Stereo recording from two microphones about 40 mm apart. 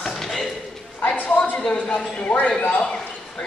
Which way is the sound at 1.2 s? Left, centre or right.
Left.